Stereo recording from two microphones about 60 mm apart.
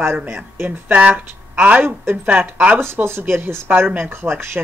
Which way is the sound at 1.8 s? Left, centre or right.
Right.